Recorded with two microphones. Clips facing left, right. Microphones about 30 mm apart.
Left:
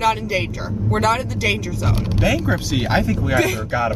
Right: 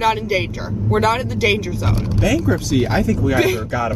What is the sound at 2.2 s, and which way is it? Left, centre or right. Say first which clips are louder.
Speech: right 2 dB; left.